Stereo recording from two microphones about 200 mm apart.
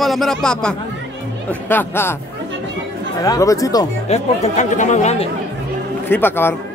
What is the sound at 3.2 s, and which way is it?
Speech, 15° left (ahead or behind).